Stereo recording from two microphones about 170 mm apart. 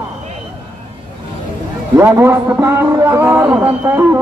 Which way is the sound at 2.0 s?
15° right (ahead or behind).